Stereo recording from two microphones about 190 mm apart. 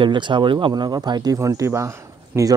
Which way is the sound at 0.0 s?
25° right (ahead or behind).